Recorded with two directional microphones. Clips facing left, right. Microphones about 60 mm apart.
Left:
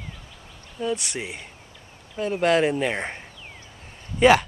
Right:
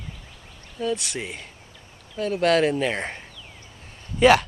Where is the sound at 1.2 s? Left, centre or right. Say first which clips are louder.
Even; centre.